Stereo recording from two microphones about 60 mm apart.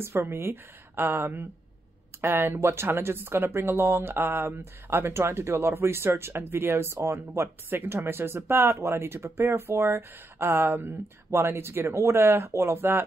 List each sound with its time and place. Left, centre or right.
0.0 s speech: right